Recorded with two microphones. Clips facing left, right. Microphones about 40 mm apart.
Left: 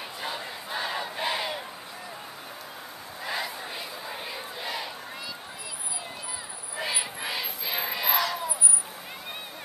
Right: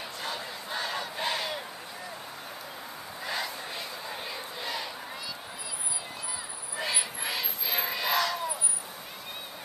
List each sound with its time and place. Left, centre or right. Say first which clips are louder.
0.2 s battle cry: left 2 dB; centre
3.3 s battle cry: left 2 dB; centre
6.8 s crowd: left 1 dB; centre